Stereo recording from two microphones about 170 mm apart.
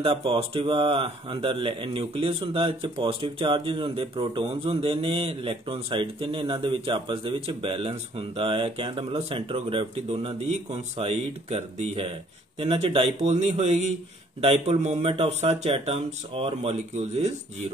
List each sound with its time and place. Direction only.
0.0 s speech: 35° right (ahead or behind)